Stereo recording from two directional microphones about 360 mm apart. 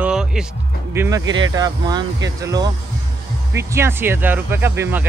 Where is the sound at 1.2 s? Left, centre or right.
Right.